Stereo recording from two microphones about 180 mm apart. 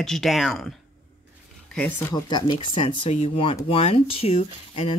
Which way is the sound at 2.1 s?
25° left (ahead or behind).